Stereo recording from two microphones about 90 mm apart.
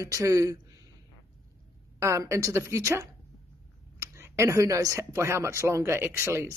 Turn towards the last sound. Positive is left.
turn(degrees=-30)  # may be behind; listen again after turning